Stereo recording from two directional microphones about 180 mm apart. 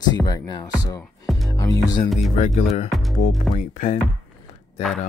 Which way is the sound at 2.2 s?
40° left (ahead or behind).